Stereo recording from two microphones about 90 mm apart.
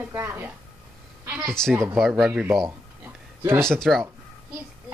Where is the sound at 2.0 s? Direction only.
Centre (ahead or behind).